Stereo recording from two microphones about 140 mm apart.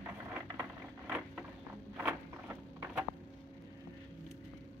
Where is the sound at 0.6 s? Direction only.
10° right (ahead or behind).